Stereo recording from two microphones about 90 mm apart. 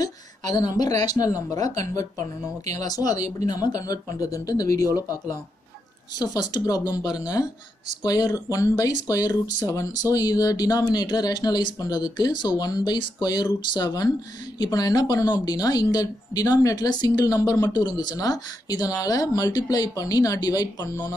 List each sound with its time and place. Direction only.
0.0 s speech: 45° left (ahead or behind)